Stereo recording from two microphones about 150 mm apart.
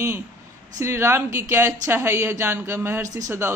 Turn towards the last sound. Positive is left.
turn(degrees=-15)  # may be behind; listen again after turning